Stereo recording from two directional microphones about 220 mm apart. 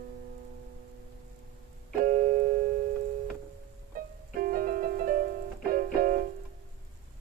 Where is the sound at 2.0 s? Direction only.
40° right (ahead or behind).